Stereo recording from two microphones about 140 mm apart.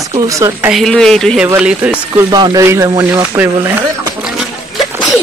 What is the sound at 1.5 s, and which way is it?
Speech, 5° right (ahead or behind).